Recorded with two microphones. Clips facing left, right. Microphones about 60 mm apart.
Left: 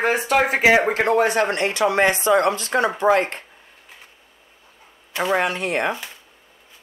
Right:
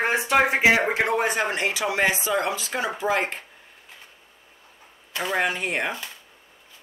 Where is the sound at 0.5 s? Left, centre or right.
Left.